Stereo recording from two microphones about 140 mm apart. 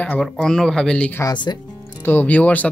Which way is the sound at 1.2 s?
30° left (ahead or behind).